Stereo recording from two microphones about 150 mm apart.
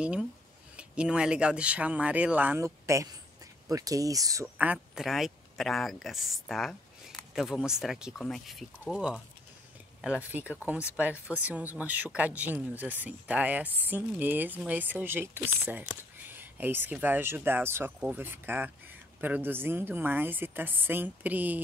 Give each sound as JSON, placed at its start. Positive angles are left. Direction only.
{"t": 0.0, "sound": "speech", "side_deg": -5}
{"t": 4.6, "sound": "a man's voice", "side_deg": -5}